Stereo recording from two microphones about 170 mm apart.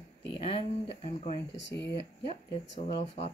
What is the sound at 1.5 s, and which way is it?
Speech, 90° left.